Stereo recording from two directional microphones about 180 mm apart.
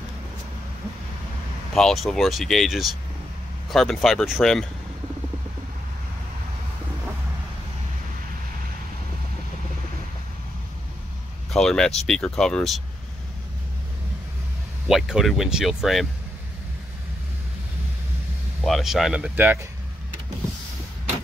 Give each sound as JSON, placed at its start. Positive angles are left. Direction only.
{"t": 1.7, "sound": "speech", "side_deg": 0}
{"t": 11.5, "sound": "speech", "side_deg": 5}
{"t": 14.9, "sound": "speech", "side_deg": 0}
{"t": 18.6, "sound": "speech", "side_deg": 0}